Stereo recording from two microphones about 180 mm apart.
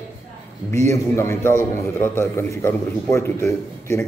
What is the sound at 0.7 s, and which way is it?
A man's voice, 15° left (ahead or behind).